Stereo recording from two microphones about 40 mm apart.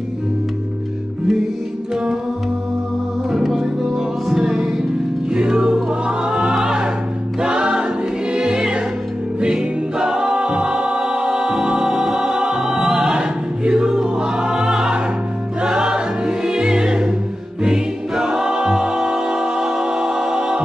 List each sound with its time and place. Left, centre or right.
3.9 s music: centre
5.9 s choir: right
6.5 s music: centre
13.9 s choir: centre
15.6 s music: centre
17.6 s choir: centre
20.3 s music: centre